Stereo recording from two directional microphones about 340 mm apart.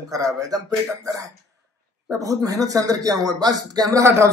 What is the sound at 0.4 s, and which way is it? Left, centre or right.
Speech, centre.